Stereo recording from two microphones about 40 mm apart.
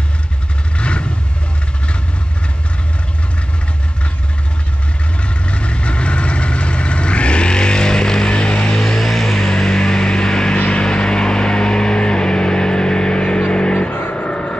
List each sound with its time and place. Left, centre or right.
0.7 s vehicle: left
5.5 s vehicle: left
10.6 s music: left
14.1 s vehicle: left